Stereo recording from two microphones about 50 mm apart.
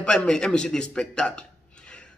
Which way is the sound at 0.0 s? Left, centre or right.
Centre.